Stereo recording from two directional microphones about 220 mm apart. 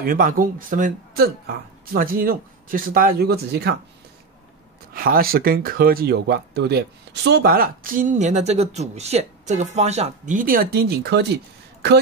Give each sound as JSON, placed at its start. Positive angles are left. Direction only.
{"t": 0.0, "sound": "speech", "side_deg": -40}
{"t": 4.9, "sound": "speech", "side_deg": -40}